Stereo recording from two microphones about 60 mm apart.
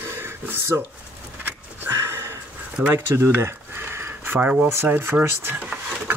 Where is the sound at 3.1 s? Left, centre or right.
Right.